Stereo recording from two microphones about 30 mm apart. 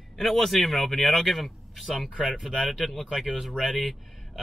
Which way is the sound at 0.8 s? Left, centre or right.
Centre.